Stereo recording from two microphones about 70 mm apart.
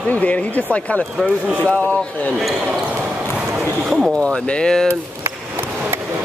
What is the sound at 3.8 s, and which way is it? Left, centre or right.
Speech, centre.